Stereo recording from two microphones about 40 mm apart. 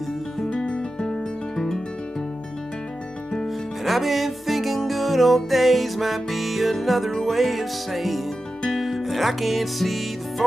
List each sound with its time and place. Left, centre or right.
0.5 s music: left
3.4 s music: centre